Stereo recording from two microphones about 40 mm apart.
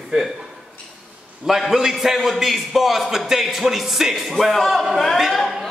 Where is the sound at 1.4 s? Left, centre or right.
Centre.